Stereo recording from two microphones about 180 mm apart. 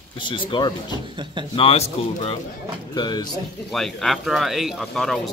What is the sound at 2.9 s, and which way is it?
Speech, 25° left (ahead or behind).